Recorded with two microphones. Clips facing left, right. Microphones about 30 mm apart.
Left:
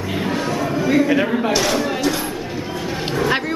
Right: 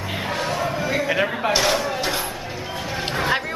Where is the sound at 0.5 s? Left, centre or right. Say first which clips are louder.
Left 3 dB; centre.